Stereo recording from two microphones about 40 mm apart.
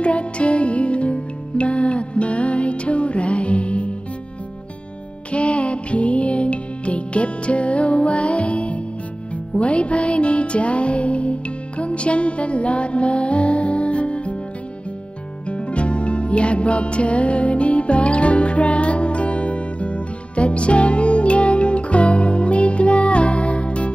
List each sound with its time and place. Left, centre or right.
0.0 s music: left
5.3 s music: left
15.4 s music: left